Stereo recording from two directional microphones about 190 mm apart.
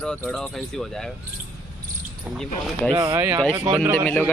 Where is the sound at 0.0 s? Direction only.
5° left (ahead or behind).